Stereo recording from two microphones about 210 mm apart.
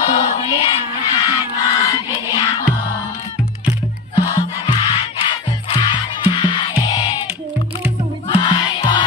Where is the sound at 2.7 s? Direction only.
5° right (ahead or behind).